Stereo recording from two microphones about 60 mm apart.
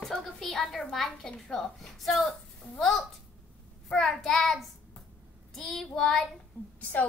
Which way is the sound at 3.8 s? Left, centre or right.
Centre.